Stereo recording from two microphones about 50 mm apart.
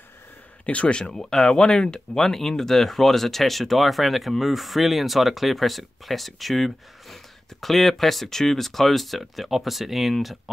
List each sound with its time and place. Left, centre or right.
0.7 s speech: left
1.1 s speech: centre